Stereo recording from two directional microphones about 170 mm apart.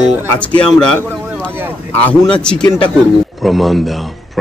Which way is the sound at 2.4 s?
5° left (ahead or behind).